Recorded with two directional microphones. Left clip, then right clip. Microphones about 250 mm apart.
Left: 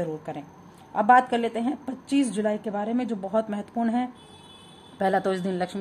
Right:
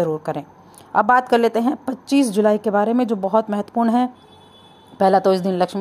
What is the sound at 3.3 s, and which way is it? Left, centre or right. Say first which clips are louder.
Speech: right 8 dB; centre.